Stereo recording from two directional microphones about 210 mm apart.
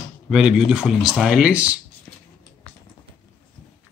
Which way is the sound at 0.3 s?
5° right (ahead or behind).